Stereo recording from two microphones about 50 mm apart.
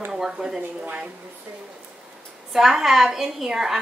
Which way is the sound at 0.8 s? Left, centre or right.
Right.